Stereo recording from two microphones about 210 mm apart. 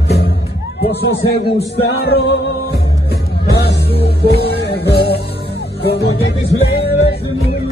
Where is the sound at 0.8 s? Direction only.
50° left (ahead or behind).